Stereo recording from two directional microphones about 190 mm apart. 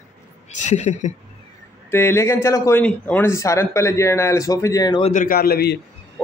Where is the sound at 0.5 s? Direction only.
40° left (ahead or behind).